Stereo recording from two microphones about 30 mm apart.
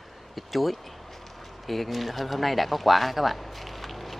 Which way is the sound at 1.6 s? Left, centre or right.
Centre.